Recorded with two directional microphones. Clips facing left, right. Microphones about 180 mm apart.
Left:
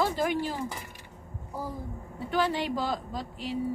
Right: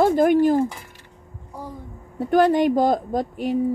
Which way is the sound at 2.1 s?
50° right (ahead or behind).